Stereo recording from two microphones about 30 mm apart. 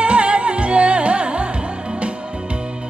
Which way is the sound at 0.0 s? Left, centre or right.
Right.